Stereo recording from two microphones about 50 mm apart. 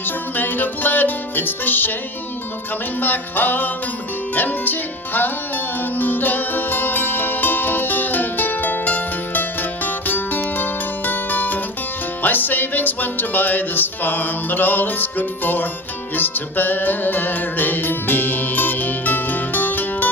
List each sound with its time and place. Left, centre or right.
0.0 s music: left
3.0 s music: left